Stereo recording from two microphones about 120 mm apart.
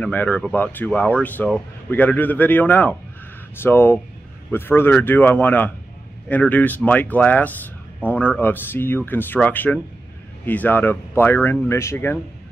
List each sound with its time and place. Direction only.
0.0 s speech: 15° left (ahead or behind)